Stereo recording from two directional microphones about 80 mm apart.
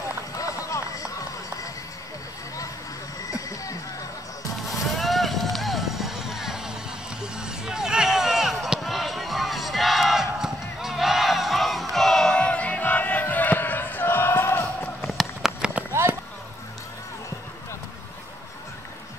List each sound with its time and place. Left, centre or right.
0.4 s run: left
3.3 s music: left
4.6 s vehicle: centre
7.2 s a sound: centre
10.4 s battle cry: centre; by 14.7 s left
15.0 s a sound: centre
15.9 s run: right